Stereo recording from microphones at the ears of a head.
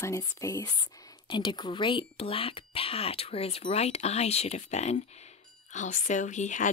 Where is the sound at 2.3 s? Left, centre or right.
Left.